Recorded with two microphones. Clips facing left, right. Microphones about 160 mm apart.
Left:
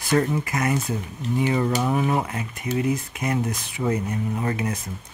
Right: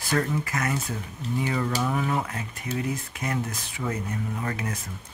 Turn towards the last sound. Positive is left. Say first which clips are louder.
# left 5 dB
turn(degrees=20)  # may be behind; listen again after turning